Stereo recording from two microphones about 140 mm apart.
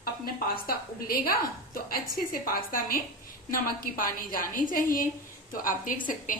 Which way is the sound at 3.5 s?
80° left.